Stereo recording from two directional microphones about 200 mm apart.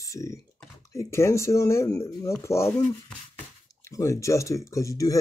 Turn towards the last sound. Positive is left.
turn(degrees=15)  # may be behind; listen again after turning